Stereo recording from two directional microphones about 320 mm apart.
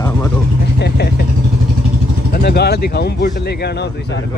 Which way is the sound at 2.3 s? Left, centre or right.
Left.